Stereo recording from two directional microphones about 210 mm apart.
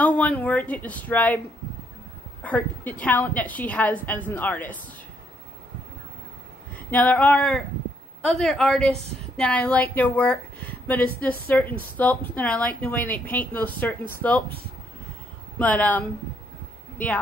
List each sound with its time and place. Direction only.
0.0 s a woman's voice: 5° left (ahead or behind)
2.4 s a woman's voice: 5° left (ahead or behind)
6.7 s a sound: 5° left (ahead or behind)
8.4 s a woman's voice: centre (ahead or behind)
15.6 s a woman's voice: 5° left (ahead or behind)